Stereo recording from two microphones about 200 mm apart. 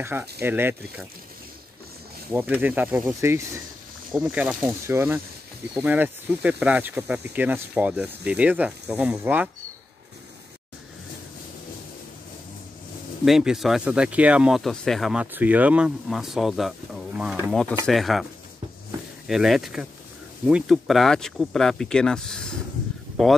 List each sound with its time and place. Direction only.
0.0 s speech: 10° right (ahead or behind)
2.3 s speech: 10° right (ahead or behind)
13.2 s speech: centre (ahead or behind)
19.2 s speech: centre (ahead or behind)